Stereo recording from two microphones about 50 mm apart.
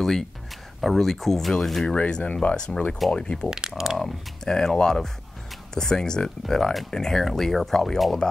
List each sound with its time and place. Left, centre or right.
0.7 s speech: centre
2.0 s speech: left
3.4 s speech: centre
4.0 s speech: centre